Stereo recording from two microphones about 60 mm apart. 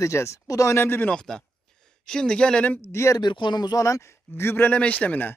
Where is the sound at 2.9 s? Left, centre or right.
Left.